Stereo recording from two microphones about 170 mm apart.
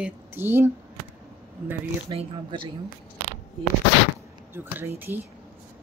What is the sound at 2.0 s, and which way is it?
Speech, 30° right (ahead or behind).